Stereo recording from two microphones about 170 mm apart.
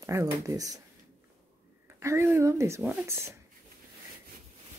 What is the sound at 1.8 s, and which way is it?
Speech, 15° right (ahead or behind).